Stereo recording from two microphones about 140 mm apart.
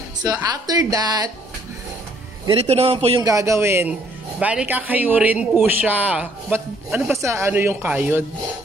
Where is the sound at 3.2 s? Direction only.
20° right (ahead or behind).